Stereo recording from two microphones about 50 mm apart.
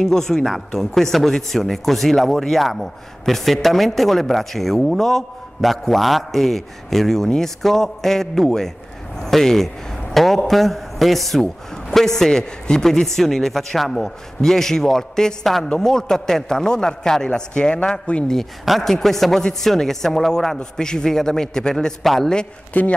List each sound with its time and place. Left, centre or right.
0.0 s a man's voice: centre
18.3 s a man's voice: centre
22.0 s speech: centre
22.7 s speech: left